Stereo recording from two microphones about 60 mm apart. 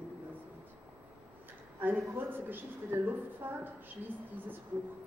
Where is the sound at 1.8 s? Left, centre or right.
Right.